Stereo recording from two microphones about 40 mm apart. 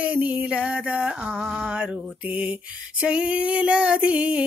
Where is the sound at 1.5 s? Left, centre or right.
Right.